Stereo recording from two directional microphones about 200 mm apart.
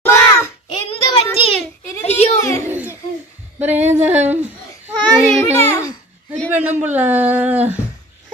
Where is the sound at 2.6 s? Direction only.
10° right (ahead or behind).